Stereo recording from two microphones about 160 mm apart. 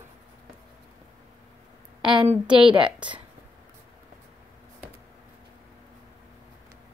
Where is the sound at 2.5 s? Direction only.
30° right (ahead or behind).